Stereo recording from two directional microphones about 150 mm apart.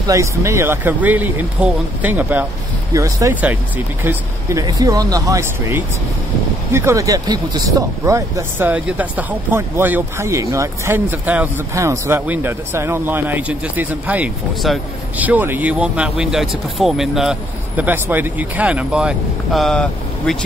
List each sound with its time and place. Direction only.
0.0 s speech: 20° right (ahead or behind)
3.3 s speech: 10° right (ahead or behind)